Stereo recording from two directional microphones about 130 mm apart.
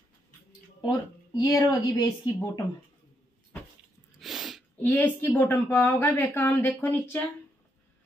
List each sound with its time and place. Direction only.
0.8 s speech: 30° left (ahead or behind)
4.2 s a sound: centre (ahead or behind)
4.8 s a woman's voice: 15° left (ahead or behind)